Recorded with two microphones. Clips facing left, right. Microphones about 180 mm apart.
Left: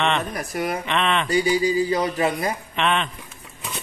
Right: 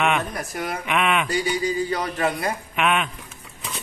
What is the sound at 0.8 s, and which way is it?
Speech, 10° right (ahead or behind).